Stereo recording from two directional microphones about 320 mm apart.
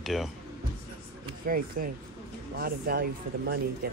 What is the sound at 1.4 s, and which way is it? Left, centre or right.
Speech, right.